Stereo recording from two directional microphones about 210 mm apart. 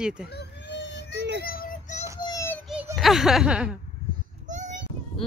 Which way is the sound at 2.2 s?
15° left (ahead or behind).